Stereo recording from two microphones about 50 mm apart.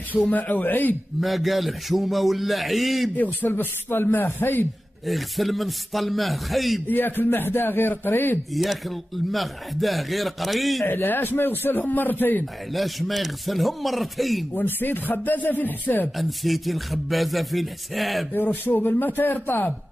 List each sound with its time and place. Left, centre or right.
0.3 s speech: left
1.2 s speech: centre
3.2 s a man's voice: left
5.0 s speech: centre
6.9 s a man's voice: left
8.5 s speech: centre
11.0 s speech: left
12.7 s speech: centre
14.5 s speech: left
16.2 s speech: centre
18.3 s speech: left